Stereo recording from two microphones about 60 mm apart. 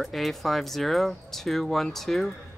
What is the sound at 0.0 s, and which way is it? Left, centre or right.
Speech, centre.